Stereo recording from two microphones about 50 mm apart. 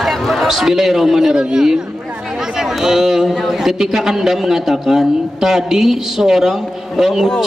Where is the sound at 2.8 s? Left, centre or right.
Centre.